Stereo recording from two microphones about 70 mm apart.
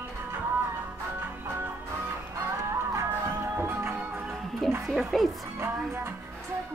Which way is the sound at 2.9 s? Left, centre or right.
Right.